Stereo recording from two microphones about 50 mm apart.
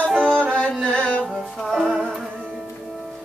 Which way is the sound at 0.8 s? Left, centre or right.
Centre.